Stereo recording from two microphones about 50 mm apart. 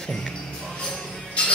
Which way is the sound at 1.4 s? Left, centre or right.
Left.